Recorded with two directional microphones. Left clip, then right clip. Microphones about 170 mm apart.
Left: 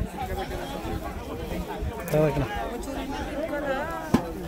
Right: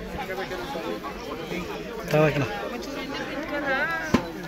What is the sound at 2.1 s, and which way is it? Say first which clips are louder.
Speech: right 2 dB; 5° left (ahead or behind).